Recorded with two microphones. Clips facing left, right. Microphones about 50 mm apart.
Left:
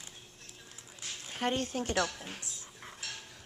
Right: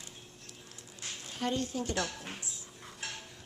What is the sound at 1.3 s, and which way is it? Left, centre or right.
Speech, left.